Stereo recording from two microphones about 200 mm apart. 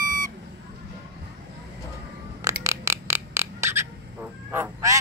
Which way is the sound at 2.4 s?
15° right (ahead or behind).